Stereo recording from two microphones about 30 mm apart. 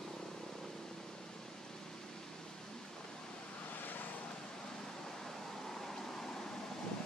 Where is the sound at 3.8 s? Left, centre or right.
Left.